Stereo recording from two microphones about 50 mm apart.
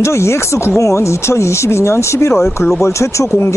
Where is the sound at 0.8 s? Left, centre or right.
Left.